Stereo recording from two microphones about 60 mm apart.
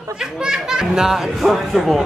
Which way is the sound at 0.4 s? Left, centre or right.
Centre.